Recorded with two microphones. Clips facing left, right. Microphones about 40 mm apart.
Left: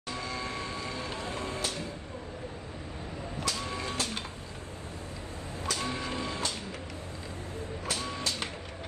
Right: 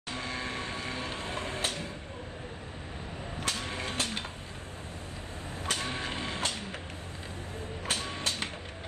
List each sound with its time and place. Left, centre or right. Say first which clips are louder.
0.1 s music: even; right
3.4 s music: even; right
5.7 s printer: even; right
7.8 s printer: right 1 dB; right